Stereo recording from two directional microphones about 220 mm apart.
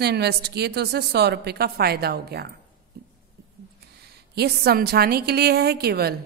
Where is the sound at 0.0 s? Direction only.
50° right (ahead or behind).